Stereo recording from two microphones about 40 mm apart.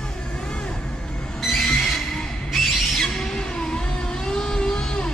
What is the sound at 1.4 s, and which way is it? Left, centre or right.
Music, centre.